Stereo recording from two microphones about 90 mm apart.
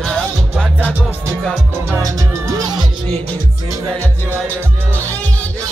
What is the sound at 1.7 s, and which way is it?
Music, 30° right (ahead or behind).